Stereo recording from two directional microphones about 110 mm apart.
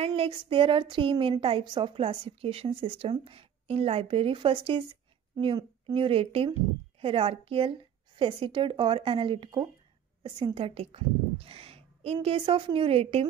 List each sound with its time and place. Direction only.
0.0 s a woman's voice: 60° right (ahead or behind)
5.9 s a woman's voice: 60° right (ahead or behind)